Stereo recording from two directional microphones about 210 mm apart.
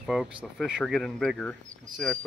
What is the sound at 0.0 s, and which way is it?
Speech, centre (ahead or behind).